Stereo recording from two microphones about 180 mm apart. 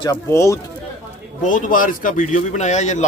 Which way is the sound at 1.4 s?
45° left (ahead or behind).